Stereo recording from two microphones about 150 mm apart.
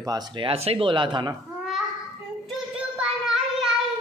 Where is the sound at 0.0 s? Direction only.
25° right (ahead or behind).